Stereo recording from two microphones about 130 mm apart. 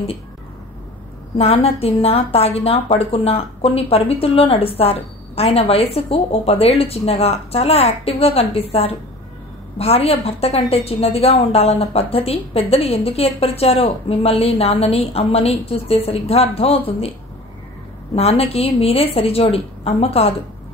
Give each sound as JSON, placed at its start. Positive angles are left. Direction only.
{"t": 1.4, "sound": "a woman's voice", "side_deg": 50}
{"t": 9.8, "sound": "a woman's voice", "side_deg": 50}
{"t": 18.1, "sound": "a woman's voice", "side_deg": 55}